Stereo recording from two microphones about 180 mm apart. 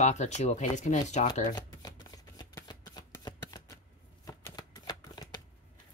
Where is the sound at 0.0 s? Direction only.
40° left (ahead or behind).